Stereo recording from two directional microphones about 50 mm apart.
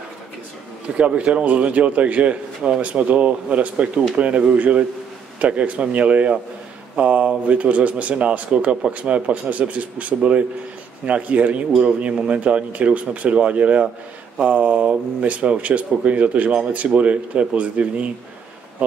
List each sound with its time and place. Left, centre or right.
0.9 s speech: right